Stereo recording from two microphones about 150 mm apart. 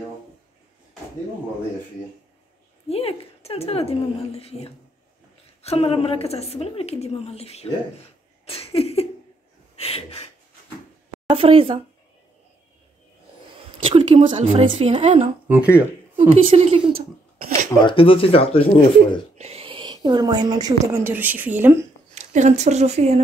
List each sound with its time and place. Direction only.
2.9 s a woman's voice: 40° left (ahead or behind)
8.5 s a sound: 40° left (ahead or behind)
11.2 s a woman's voice: 35° right (ahead or behind)
13.8 s a woman's voice: 40° right (ahead or behind)
15.4 s speech: 10° right (ahead or behind)
16.3 s a woman's voice: 35° right (ahead or behind)
17.8 s speech: 35° left (ahead or behind)
19.3 s a woman's voice: 45° right (ahead or behind); by 21.7 s 10° right (ahead or behind)
22.1 s speech: 50° right (ahead or behind)